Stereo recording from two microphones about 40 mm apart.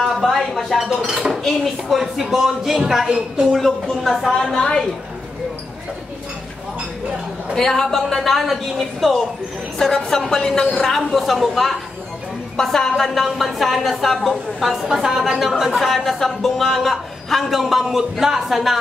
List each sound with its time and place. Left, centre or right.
0.0 s a sound: centre
1.0 s speech: right
1.4 s a man's voice: centre
4.6 s a woman's voice: centre
7.5 s a man's voice: centre
12.5 s a man's voice: centre
14.8 s a man's voice: centre